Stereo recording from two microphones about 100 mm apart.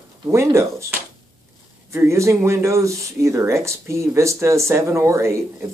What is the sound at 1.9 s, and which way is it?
Speech, 30° right (ahead or behind).